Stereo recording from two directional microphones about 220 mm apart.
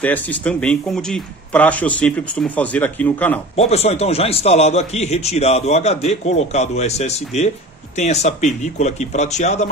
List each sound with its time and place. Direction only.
0.0 s speech: 5° left (ahead or behind)
3.5 s a man's voice: 30° left (ahead or behind)